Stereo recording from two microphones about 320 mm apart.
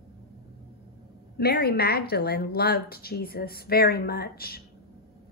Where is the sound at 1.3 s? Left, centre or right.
Left.